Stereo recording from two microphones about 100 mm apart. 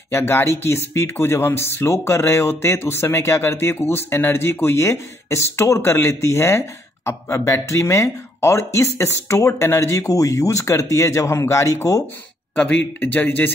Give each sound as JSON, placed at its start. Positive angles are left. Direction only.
{"t": 0.1, "sound": "speech", "side_deg": 25}
{"t": 12.5, "sound": "a man's voice", "side_deg": 15}